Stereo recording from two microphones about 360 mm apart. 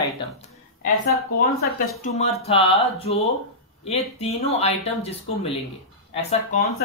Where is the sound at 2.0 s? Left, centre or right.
Centre.